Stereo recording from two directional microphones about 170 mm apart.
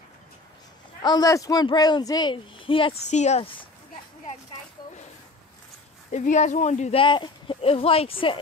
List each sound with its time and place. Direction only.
1.0 s a man's voice: 20° left (ahead or behind)
3.1 s speech: 40° left (ahead or behind)
6.1 s speech: 45° left (ahead or behind)